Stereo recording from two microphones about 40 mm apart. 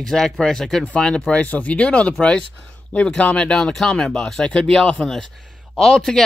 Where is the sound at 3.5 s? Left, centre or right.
Centre.